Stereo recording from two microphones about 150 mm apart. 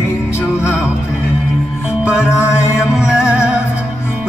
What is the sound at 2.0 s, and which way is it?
Music, 10° right (ahead or behind).